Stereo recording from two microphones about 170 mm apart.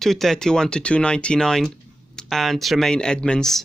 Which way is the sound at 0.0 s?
Centre (ahead or behind).